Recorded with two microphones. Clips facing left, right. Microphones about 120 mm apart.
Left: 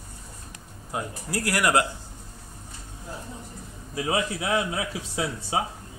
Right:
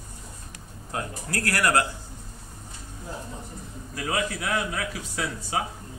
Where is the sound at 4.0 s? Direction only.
25° left (ahead or behind).